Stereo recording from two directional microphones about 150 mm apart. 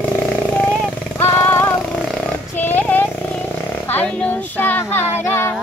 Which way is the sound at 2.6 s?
10° left (ahead or behind).